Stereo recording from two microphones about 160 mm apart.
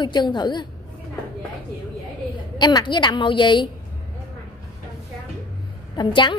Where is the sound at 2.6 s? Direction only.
25° left (ahead or behind).